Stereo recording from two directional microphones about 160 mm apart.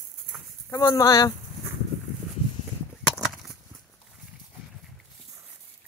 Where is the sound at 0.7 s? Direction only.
20° left (ahead or behind).